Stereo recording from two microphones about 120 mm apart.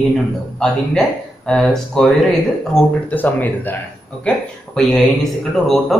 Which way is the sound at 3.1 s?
15° left (ahead or behind).